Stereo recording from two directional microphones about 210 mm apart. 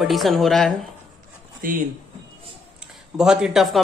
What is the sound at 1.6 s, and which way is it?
Speech, 40° right (ahead or behind).